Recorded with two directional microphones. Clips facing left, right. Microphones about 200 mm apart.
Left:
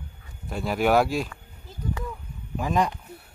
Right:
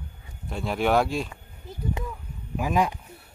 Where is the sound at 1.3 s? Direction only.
20° right (ahead or behind).